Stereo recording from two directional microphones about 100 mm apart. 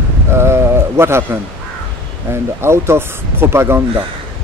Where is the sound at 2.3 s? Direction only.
25° right (ahead or behind).